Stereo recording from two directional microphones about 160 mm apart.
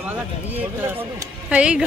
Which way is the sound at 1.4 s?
5° right (ahead or behind).